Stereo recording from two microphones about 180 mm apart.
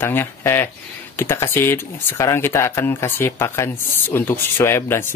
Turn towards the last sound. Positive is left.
turn(degrees=15)  # may be behind; listen again after turning